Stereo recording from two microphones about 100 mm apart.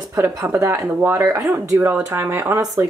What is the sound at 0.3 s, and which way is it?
A woman's voice, 30° right (ahead or behind).